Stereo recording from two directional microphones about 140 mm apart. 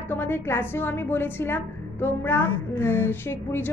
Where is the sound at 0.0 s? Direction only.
15° left (ahead or behind).